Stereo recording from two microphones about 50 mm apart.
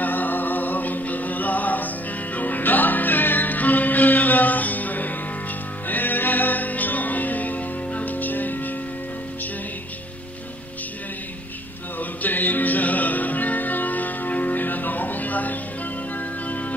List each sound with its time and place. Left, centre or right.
0.0 s music: left
12.0 s music: left